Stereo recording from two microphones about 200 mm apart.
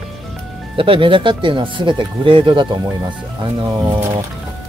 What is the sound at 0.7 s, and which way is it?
Speech, 25° right (ahead or behind).